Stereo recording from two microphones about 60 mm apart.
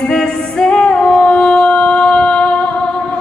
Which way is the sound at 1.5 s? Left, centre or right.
Centre.